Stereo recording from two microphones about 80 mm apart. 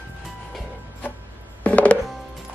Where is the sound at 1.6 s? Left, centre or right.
Centre.